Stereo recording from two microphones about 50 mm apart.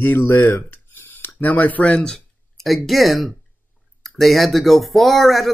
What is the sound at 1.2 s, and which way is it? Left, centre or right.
Speech, left.